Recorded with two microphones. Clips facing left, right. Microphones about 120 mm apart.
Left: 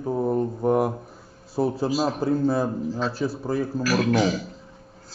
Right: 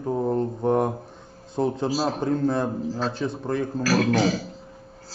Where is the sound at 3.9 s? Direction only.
35° right (ahead or behind).